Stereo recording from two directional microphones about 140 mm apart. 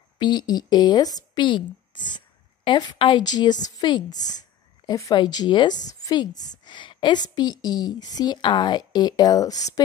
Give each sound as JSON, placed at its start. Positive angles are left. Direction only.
{"t": 0.2, "sound": "a woman's voice", "side_deg": 30}